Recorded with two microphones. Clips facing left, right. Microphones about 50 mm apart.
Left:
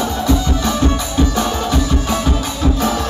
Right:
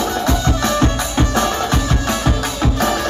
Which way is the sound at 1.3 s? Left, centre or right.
Right.